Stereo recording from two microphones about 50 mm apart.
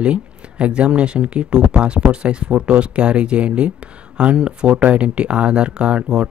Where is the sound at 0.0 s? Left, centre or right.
Right.